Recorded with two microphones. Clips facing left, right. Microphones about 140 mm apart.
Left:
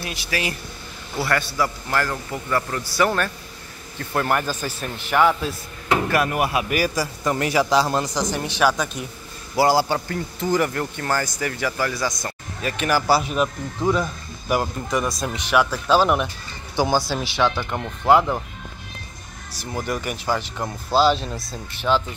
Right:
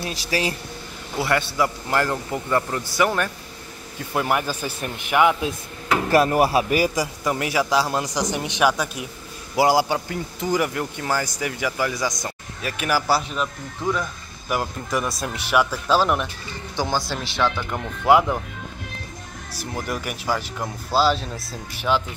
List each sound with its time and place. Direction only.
0.0 s speech: 35° right (ahead or behind)
1.1 s a man's voice: 20° right (ahead or behind)
4.0 s speech: 10° right (ahead or behind)
6.0 s speech: 30° right (ahead or behind)
7.2 s speech: 5° right (ahead or behind)
12.6 s speech: 5° right (ahead or behind)
13.3 s speech: 15° left (ahead or behind)
14.5 s speech: centre (ahead or behind)
16.7 s speech: 10° left (ahead or behind); by 18.4 s 5° right (ahead or behind)
19.6 s speech: centre (ahead or behind)